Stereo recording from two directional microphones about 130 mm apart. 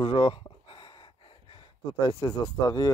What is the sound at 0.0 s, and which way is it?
Gasp, 40° left (ahead or behind).